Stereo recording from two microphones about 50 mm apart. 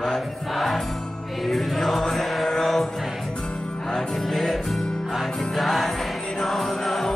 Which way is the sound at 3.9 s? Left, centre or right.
Centre.